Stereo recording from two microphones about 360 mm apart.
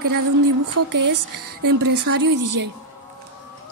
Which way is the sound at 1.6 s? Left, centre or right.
Right.